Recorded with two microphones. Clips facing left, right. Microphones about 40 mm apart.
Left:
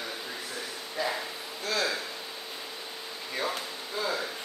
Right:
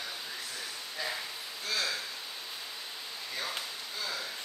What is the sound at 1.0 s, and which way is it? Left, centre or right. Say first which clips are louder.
Speech: left 6 dB; centre.